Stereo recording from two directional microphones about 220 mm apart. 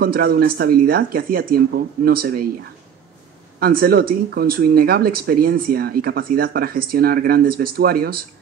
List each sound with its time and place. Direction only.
0.0 s speech: 45° right (ahead or behind)
3.5 s speech: 45° right (ahead or behind)